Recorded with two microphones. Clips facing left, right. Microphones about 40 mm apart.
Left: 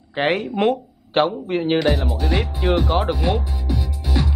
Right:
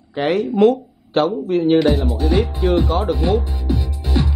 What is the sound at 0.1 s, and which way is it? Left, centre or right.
Speech, left.